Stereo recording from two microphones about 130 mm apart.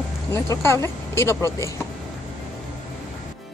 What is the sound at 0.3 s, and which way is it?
Speech, 20° left (ahead or behind).